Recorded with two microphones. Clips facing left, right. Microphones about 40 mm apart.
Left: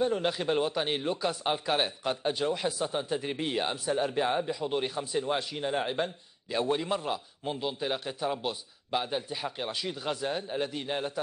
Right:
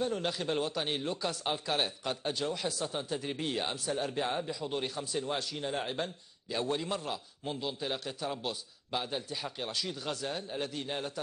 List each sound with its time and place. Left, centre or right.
0.0 s speech: centre